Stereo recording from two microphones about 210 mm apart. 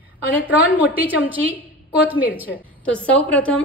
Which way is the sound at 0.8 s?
10° right (ahead or behind).